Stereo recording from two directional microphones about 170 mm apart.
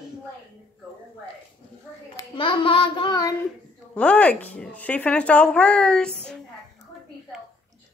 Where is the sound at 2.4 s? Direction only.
30° left (ahead or behind).